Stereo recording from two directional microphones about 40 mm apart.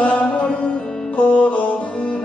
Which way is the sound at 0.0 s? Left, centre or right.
Left.